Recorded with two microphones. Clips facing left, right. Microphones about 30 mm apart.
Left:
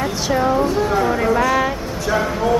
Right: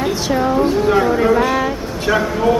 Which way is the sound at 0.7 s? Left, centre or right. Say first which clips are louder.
Right 4 dB; right.